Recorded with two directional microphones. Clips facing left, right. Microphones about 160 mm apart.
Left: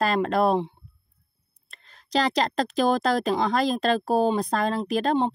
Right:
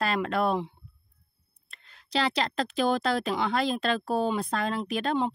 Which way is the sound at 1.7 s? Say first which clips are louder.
Left 5 dB; 40° left (ahead or behind).